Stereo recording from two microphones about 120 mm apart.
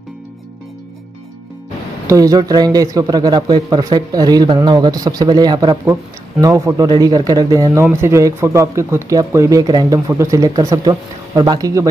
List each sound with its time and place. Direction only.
2.0 s speech: 30° right (ahead or behind)